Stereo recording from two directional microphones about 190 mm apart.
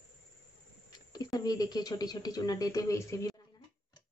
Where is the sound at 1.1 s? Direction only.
20° left (ahead or behind).